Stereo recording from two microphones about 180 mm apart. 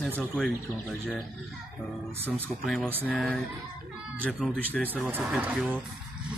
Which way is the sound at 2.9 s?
10° right (ahead or behind).